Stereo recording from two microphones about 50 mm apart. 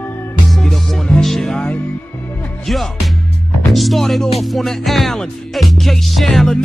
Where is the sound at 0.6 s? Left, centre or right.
Centre.